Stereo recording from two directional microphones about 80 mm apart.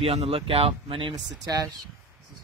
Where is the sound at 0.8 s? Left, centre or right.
Right.